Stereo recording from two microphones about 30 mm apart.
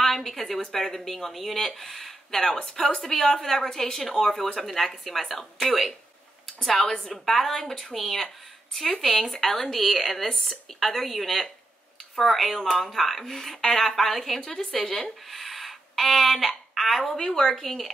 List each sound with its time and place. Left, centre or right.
0.0 s a sound: centre
0.3 s speech: centre
3.0 s a woman's voice: centre
6.7 s a woman's voice: centre
9.8 s speech: centre
12.6 s speech: left
12.9 s a woman's voice: centre
14.4 s speech: centre
17.2 s a woman's voice: centre